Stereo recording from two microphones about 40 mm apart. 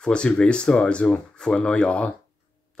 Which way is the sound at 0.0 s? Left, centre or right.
Left.